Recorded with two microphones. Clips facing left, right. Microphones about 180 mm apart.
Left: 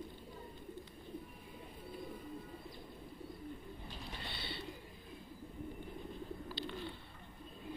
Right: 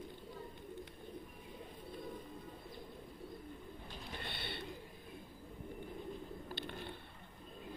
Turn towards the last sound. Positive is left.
turn(degrees=-55)  # may be behind; listen again after turning